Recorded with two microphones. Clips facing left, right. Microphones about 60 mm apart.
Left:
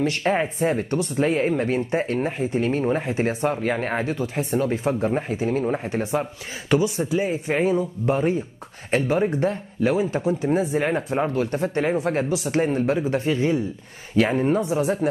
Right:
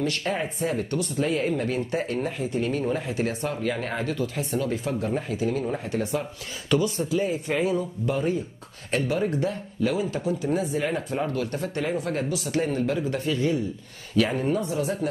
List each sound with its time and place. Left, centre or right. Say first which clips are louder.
0.0 s speech: left 5 dB; left
7.2 s speech: left 3 dB; left